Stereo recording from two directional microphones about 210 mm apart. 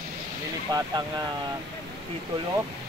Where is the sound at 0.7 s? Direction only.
20° right (ahead or behind).